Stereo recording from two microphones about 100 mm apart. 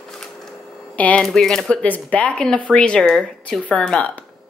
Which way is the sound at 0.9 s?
10° left (ahead or behind).